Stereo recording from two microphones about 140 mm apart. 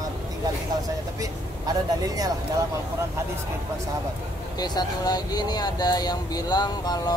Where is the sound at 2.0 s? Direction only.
25° right (ahead or behind).